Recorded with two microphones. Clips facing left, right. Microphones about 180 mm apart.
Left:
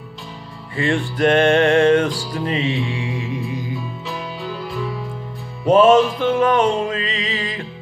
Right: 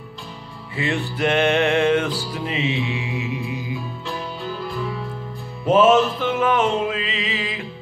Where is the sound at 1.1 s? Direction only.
10° right (ahead or behind).